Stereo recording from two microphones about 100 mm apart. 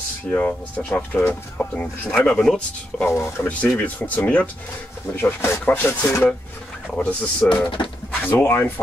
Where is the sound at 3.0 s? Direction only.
25° left (ahead or behind).